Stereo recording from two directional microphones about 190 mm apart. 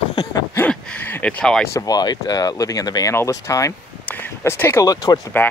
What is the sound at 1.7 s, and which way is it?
Speech, 20° left (ahead or behind).